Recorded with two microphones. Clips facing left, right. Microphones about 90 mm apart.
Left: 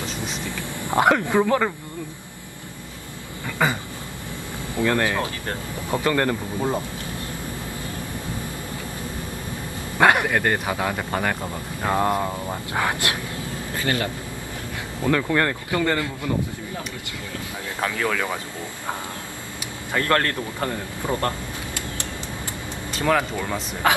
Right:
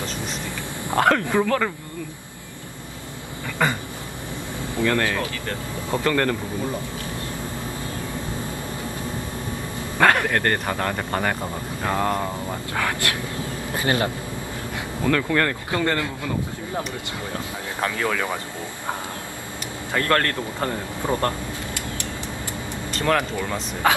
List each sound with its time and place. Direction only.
0.8 s speech: 15° left (ahead or behind)
3.6 s speech: 10° left (ahead or behind)
9.9 s a sound: 15° left (ahead or behind)
10.3 s speech: 5° left (ahead or behind)
11.8 s speech: 15° left (ahead or behind)
13.7 s speech: 25° right (ahead or behind)
15.0 s speech: 15° left (ahead or behind)
17.9 s speech: 15° right (ahead or behind)
19.9 s speech: 15° left (ahead or behind)
20.6 s speech: 20° right (ahead or behind)
22.9 s a sound: 5° left (ahead or behind)